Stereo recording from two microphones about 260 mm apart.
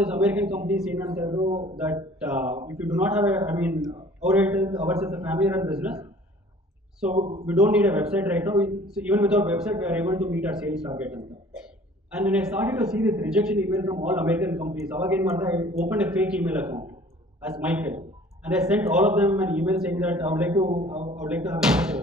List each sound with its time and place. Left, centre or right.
0.0 s a man's voice: centre
1.4 s a man's voice: right
1.8 s a man's voice: centre
7.2 s a man's voice: right
7.4 s a man's voice: centre